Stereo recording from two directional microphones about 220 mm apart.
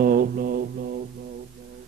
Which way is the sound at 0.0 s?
40° right (ahead or behind).